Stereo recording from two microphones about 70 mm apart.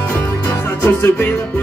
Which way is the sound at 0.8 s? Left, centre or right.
Left.